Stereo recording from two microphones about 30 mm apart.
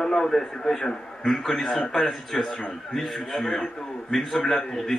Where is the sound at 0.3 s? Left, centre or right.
Centre.